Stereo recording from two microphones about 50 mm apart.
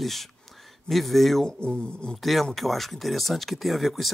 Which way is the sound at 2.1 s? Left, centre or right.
Centre.